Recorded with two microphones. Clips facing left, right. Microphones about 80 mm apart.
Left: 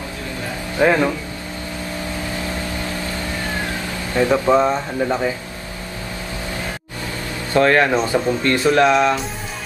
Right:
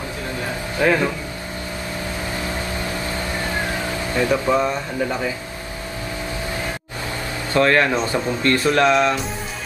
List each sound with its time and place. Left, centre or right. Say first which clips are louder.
0.7 s speech: left 3 dB; left
4.2 s speech: left 4 dB; left
7.5 s speech: left 2 dB; left
8.6 s music: left 3 dB; centre